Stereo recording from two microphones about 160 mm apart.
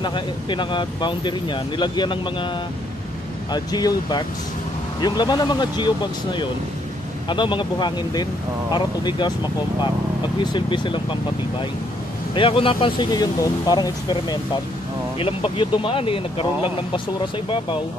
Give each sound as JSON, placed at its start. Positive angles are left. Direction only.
{"t": 0.0, "sound": "speech", "side_deg": 30}
{"t": 3.5, "sound": "speech", "side_deg": 25}
{"t": 12.4, "sound": "speech", "side_deg": 35}